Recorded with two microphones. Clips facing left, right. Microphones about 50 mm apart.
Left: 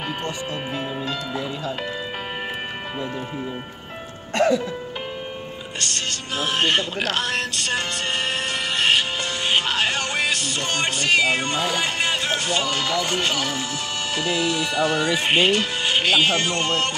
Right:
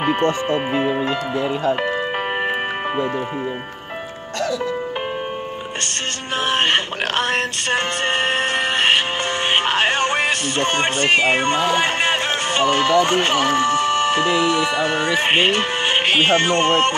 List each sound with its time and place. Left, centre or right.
0.0 s speech: right
6.4 s speech: right